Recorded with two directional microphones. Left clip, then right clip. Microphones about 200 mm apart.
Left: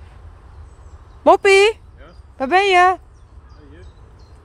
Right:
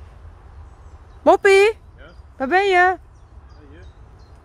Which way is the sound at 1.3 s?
15° right (ahead or behind).